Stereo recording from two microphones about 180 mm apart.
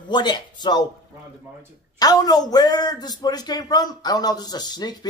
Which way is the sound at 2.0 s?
20° left (ahead or behind).